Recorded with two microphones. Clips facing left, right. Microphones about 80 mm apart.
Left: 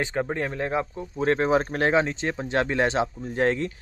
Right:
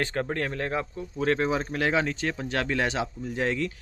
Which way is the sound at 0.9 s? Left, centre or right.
Left.